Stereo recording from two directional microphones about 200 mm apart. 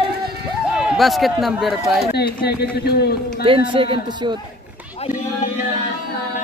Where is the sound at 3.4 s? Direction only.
25° right (ahead or behind).